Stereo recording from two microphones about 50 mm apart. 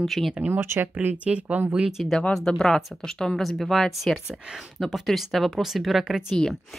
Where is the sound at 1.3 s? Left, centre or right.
Right.